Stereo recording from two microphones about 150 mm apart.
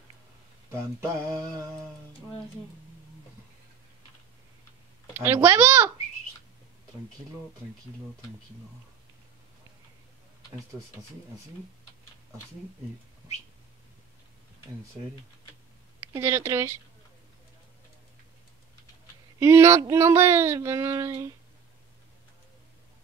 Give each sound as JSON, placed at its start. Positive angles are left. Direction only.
{"t": 0.7, "sound": "a sound", "side_deg": -20}
{"t": 5.2, "sound": "speech", "side_deg": -15}
{"t": 16.1, "sound": "speech", "side_deg": -15}
{"t": 19.4, "sound": "speech", "side_deg": -15}